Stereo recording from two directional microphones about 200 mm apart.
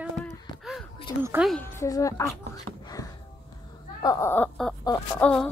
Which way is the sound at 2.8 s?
20° left (ahead or behind).